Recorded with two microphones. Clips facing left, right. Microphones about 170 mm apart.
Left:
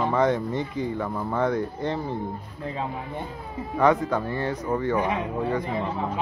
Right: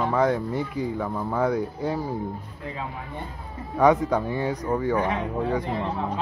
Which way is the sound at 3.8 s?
15° right (ahead or behind).